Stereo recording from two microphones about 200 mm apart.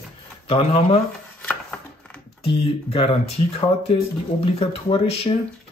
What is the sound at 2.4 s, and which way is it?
A man's voice, 25° left (ahead or behind).